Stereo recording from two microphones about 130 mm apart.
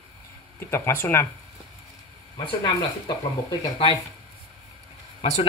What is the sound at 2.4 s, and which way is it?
Speech, 35° left (ahead or behind).